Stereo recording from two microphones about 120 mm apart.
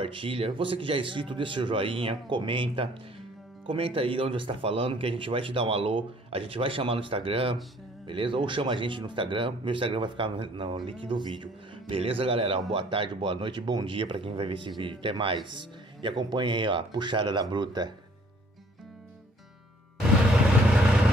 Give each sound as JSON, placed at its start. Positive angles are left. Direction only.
{"t": 0.0, "sound": "speech", "side_deg": -45}